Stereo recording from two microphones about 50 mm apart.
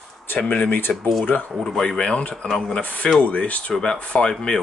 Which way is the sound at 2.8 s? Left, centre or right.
Left.